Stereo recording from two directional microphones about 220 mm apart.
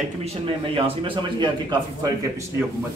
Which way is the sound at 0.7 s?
25° right (ahead or behind).